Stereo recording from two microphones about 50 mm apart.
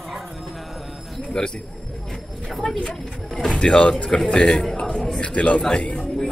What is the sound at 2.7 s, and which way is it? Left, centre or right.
A man's voice, centre.